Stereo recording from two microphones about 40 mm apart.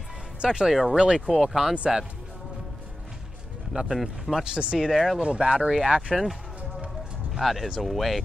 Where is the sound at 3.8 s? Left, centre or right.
Centre.